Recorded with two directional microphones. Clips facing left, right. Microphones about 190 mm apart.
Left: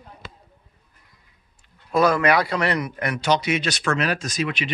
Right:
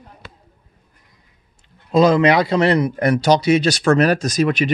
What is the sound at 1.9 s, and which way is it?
A man's voice, 20° right (ahead or behind).